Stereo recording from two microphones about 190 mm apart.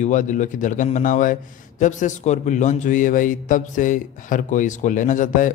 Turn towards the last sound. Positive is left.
turn(degrees=45)  # may be behind; listen again after turning